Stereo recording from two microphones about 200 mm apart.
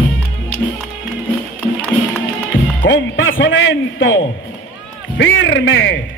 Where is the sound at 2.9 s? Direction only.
70° left (ahead or behind).